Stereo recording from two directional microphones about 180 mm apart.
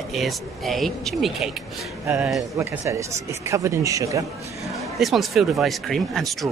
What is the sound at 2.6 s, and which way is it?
Speech, 15° right (ahead or behind).